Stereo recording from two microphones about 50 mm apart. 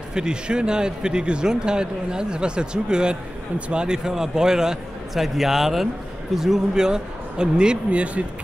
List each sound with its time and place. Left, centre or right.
0.1 s speech: centre